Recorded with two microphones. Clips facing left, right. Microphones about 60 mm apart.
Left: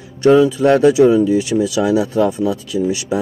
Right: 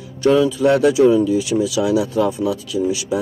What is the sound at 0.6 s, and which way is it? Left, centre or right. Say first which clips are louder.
Speech: left 2 dB; left.